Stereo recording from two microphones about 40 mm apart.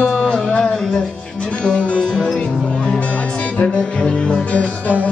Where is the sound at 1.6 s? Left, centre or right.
Left.